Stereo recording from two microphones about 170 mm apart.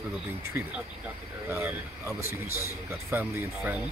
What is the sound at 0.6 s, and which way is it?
Speech, 10° right (ahead or behind).